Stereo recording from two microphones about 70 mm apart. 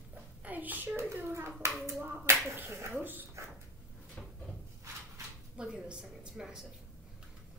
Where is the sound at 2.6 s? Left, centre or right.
Right.